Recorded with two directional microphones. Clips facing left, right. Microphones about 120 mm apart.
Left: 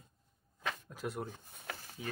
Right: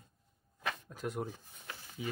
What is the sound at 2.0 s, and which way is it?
Stir, 5° right (ahead or behind).